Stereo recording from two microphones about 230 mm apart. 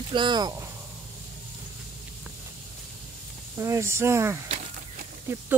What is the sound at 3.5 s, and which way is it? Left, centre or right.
Speech, centre.